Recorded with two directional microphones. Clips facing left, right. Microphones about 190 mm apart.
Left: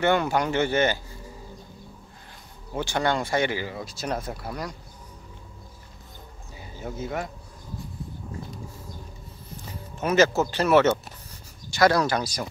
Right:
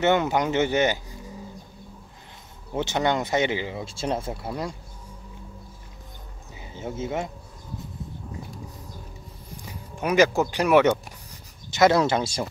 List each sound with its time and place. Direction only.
0.0 s speech: 20° right (ahead or behind)
2.7 s speech: 20° right (ahead or behind)
6.5 s a sound: 20° right (ahead or behind)
9.9 s speech: 10° right (ahead or behind)